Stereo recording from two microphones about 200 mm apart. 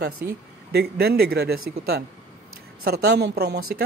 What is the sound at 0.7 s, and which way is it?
Speech, 50° right (ahead or behind).